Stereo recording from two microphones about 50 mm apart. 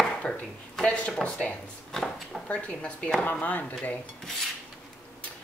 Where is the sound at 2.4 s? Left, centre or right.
Left.